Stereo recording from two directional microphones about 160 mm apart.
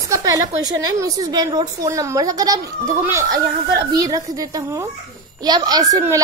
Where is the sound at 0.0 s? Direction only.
20° right (ahead or behind).